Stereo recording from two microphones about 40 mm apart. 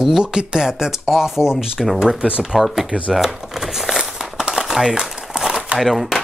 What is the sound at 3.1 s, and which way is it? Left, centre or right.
Crumpling, centre.